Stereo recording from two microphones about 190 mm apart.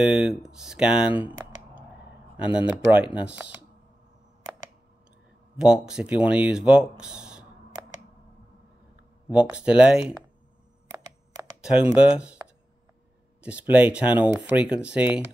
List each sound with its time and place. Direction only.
0.0 s speech: 5° right (ahead or behind)
2.3 s speech: 5° right (ahead or behind)
5.6 s speech: 5° right (ahead or behind)
9.3 s speech: 5° right (ahead or behind)
11.6 s speech: 5° right (ahead or behind)